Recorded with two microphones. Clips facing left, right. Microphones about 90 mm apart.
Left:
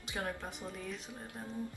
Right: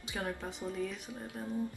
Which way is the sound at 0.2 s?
5° left (ahead or behind).